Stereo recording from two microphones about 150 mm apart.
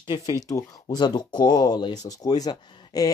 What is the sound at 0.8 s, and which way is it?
Speech, 30° left (ahead or behind).